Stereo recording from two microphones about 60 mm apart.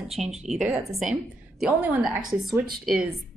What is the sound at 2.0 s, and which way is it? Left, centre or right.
Speech, centre.